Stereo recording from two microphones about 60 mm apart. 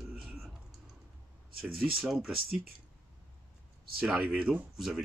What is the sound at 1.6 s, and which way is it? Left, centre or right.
Speech, centre.